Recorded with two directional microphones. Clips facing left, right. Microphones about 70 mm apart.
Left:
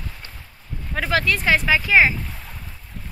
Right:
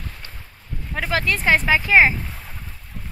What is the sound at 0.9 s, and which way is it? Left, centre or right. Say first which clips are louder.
Speech: left 1 dB; centre.